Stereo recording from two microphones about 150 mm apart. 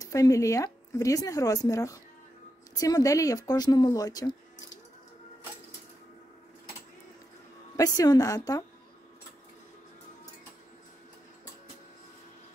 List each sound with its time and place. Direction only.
0.0 s speech: 25° left (ahead or behind)
7.7 s speech: 25° left (ahead or behind)